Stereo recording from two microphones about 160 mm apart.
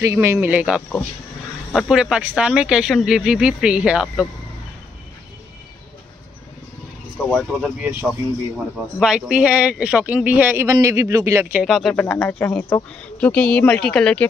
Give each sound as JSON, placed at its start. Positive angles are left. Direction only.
{"t": 0.0, "sound": "speech", "side_deg": -20}
{"t": 7.2, "sound": "speech", "side_deg": 0}
{"t": 8.7, "sound": "speech", "side_deg": -5}
{"t": 11.6, "sound": "speech", "side_deg": 0}